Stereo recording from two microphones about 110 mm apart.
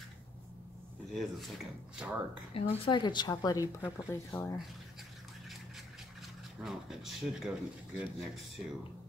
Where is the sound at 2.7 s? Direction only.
50° left (ahead or behind); by 4.6 s 20° left (ahead or behind).